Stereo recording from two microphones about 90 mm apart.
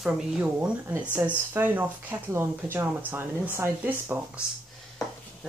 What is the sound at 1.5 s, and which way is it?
Speech, 25° right (ahead or behind).